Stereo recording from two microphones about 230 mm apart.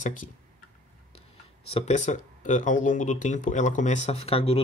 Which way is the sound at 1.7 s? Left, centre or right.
Left.